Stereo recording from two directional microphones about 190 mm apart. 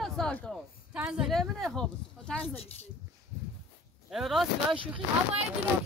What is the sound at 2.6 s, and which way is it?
Speech, 35° left (ahead or behind).